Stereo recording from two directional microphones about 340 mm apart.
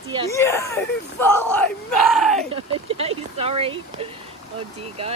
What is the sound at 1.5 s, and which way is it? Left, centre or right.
Crowd, centre.